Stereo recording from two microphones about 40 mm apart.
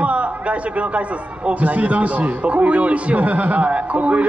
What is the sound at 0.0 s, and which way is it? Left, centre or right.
A man's voice, right.